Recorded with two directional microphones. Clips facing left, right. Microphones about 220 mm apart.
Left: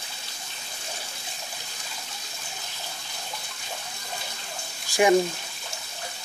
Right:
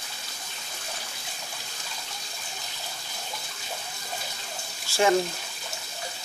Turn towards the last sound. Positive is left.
turn(degrees=15)  # may be behind; listen again after turning